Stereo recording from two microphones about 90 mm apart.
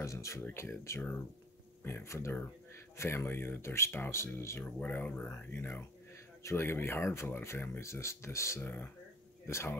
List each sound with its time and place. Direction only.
0.0 s speech: 35° left (ahead or behind)
4.6 s speech: 20° left (ahead or behind)
8.5 s speech: 20° left (ahead or behind)
9.5 s speech: 30° left (ahead or behind)